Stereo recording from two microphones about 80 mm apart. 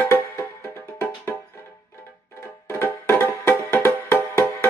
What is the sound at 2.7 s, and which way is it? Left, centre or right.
Music, left.